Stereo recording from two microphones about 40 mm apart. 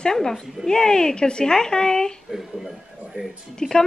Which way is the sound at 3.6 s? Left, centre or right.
Centre.